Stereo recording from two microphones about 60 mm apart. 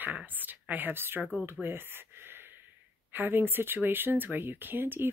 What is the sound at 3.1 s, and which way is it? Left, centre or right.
Speech, right.